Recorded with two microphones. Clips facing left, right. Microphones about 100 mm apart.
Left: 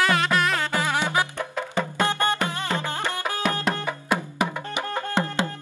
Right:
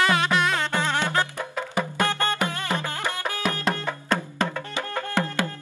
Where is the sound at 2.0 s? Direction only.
20° left (ahead or behind).